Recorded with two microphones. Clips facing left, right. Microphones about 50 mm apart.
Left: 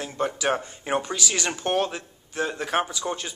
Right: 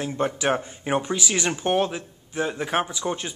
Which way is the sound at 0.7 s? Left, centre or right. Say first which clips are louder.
Right 2 dB; centre.